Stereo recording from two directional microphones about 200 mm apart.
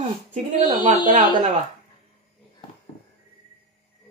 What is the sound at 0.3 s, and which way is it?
Speech, 40° right (ahead or behind).